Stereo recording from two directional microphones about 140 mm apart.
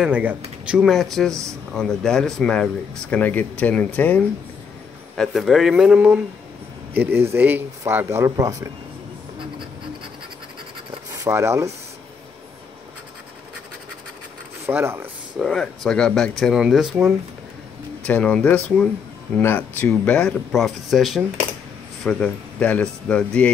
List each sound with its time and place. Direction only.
0.0 s speech: 10° right (ahead or behind)
1.3 s rub: 20° right (ahead or behind)
1.7 s speech: centre (ahead or behind)
5.1 s speech: centre (ahead or behind); by 8.7 s 25° right (ahead or behind)
11.2 s rub: 20° right (ahead or behind)
14.7 s speech: 15° right (ahead or behind)
15.3 s speech: centre (ahead or behind)
18.0 s speech: 10° left (ahead or behind)